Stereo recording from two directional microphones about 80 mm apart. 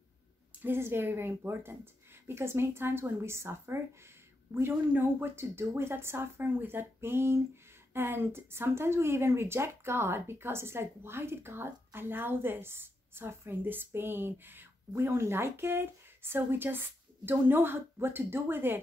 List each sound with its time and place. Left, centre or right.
0.6 s speech: right